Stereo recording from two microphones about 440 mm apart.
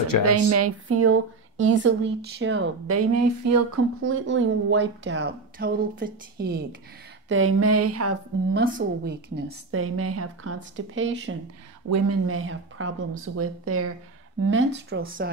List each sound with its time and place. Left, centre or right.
0.2 s a woman's voice: right
8.6 s a woman's voice: centre